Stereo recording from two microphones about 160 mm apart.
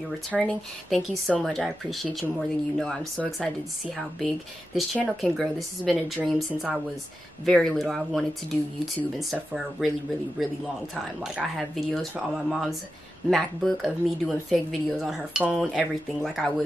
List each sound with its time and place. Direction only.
0.3 s speech: 10° left (ahead or behind)
4.7 s speech: centre (ahead or behind)
11.3 s speech: centre (ahead or behind)